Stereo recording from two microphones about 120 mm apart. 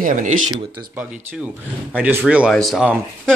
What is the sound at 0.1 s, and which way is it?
Speech, 90° right.